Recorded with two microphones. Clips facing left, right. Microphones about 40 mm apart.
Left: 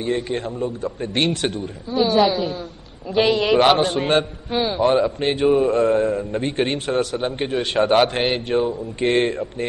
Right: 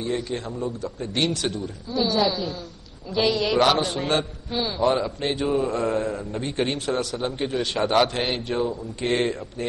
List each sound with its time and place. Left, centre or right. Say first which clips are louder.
0.0 s a man's voice: left 4 dB; left